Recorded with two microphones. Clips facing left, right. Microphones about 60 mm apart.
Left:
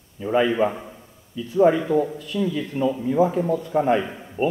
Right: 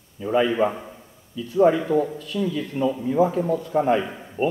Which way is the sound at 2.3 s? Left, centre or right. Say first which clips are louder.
Left 1 dB; centre.